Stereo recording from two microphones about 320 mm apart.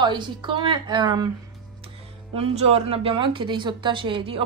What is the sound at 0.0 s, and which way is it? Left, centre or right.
A woman's voice, centre.